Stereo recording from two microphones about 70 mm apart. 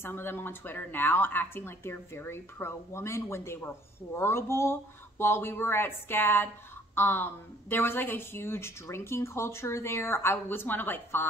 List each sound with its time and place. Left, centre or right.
0.0 s speech: left